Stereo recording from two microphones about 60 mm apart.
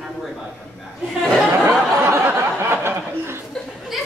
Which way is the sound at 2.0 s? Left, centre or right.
Right.